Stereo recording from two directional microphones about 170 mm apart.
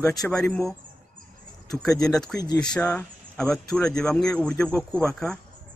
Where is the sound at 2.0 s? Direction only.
5° left (ahead or behind).